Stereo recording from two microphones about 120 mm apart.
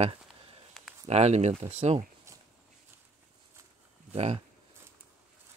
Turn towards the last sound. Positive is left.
turn(degrees=-55)  # may be behind; listen again after turning